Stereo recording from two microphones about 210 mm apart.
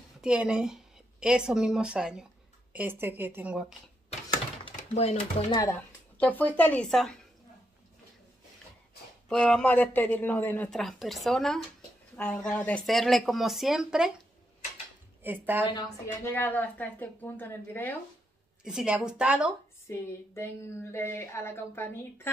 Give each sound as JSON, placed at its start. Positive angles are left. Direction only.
{"t": 0.2, "sound": "a woman's voice", "side_deg": -5}
{"t": 4.6, "sound": "speech", "side_deg": 25}
{"t": 5.6, "sound": "a woman's voice", "side_deg": 10}
{"t": 9.3, "sound": "speech", "side_deg": 5}
{"t": 15.2, "sound": "speech", "side_deg": -10}
{"t": 15.6, "sound": "a woman's voice", "side_deg": 20}
{"t": 16.3, "sound": "a woman's voice", "side_deg": 10}
{"t": 18.6, "sound": "speech", "side_deg": -5}
{"t": 19.9, "sound": "a woman's voice", "side_deg": 10}